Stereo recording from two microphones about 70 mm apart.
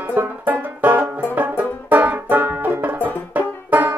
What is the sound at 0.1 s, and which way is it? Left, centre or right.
Banjo, right.